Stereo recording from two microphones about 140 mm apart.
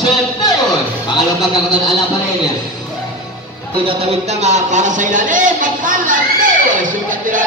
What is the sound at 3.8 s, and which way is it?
Speech, 45° right (ahead or behind).